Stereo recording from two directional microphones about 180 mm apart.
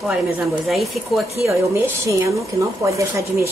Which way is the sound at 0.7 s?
Centre (ahead or behind).